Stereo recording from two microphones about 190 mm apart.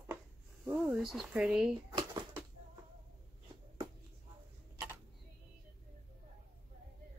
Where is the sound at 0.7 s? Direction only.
5° right (ahead or behind).